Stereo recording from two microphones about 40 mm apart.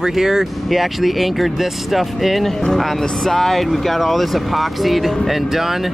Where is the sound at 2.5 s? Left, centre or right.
Centre.